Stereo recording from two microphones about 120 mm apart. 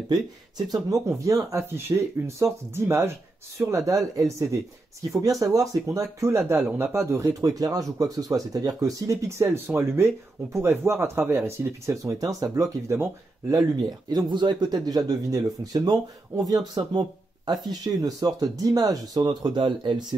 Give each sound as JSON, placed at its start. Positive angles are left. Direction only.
{"t": 0.8, "sound": "speech", "side_deg": -25}
{"t": 16.8, "sound": "speech", "side_deg": -45}
{"t": 17.8, "sound": "speech", "side_deg": -30}